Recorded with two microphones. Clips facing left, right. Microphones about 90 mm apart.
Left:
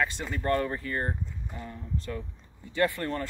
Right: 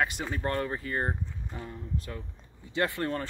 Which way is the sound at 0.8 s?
20° right (ahead or behind).